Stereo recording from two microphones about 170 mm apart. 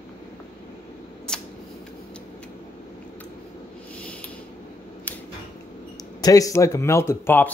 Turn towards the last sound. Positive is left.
turn(degrees=15)  # may be behind; listen again after turning